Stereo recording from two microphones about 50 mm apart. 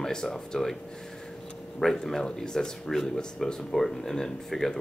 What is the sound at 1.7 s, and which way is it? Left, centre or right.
Speech, centre.